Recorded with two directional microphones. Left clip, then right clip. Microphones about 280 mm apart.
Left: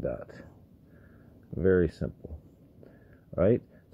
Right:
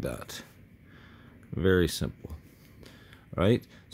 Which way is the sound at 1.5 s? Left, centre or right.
Right.